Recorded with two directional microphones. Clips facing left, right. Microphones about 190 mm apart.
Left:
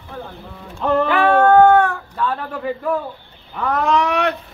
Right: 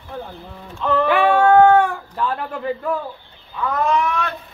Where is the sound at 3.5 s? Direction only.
75° left (ahead or behind).